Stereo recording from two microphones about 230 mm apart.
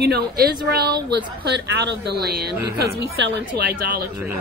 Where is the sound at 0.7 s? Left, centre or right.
Right.